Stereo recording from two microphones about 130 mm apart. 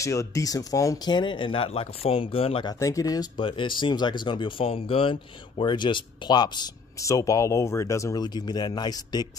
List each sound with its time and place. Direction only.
0.0 s speech: 25° left (ahead or behind)
1.1 s speech: 40° left (ahead or behind)
2.6 s speech: 25° left (ahead or behind)
3.3 s speech: 40° left (ahead or behind)